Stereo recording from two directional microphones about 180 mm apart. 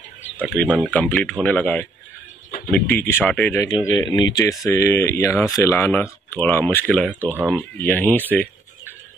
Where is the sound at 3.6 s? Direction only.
25° left (ahead or behind).